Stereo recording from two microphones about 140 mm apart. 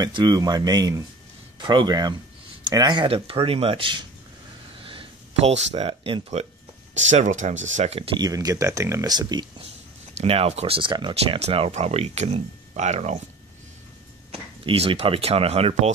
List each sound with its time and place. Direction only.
0.0 s speech: 30° right (ahead or behind)
4.8 s a sound: 45° right (ahead or behind)
6.9 s speech: 55° right (ahead or behind)
8.2 s speech: 25° right (ahead or behind)
10.1 s speech: 45° right (ahead or behind)
11.3 s speech: 45° right (ahead or behind)
14.3 s speech: 45° right (ahead or behind)